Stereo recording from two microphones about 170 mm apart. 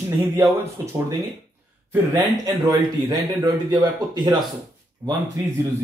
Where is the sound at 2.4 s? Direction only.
20° right (ahead or behind).